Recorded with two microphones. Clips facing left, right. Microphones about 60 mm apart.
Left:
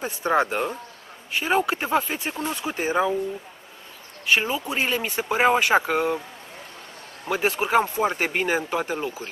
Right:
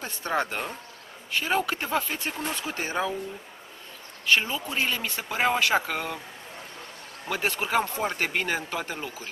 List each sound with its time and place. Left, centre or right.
0.0 s speech: centre
4.3 s speech: centre
7.2 s speech: centre